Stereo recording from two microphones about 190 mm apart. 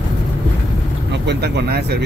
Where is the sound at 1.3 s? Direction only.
60° right (ahead or behind).